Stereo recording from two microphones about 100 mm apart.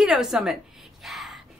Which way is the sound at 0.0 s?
5° right (ahead or behind).